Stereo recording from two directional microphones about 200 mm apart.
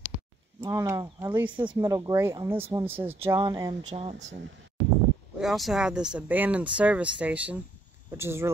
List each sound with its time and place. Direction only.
0.6 s speech: 15° right (ahead or behind)
3.9 s speech: 30° right (ahead or behind)
5.4 s speech: centre (ahead or behind)